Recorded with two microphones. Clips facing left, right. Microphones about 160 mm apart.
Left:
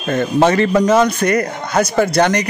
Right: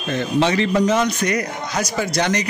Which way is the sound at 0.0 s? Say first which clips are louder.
Left 5 dB; 50° left (ahead or behind).